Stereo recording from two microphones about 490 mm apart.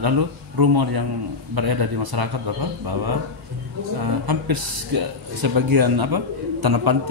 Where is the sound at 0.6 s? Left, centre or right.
Right.